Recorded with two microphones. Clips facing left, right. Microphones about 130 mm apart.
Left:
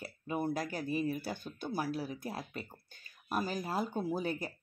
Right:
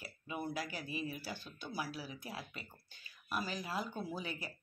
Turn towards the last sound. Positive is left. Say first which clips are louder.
# left 8 dB
turn(degrees=45)  # may be behind; listen again after turning